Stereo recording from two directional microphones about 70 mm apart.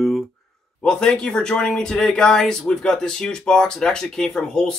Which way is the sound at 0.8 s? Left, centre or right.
Centre.